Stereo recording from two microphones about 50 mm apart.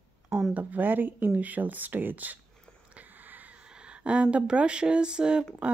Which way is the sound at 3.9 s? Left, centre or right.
Right.